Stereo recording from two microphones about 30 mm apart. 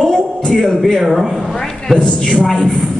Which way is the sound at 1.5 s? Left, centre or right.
Left.